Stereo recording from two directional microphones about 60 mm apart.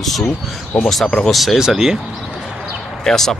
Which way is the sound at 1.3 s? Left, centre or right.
Centre.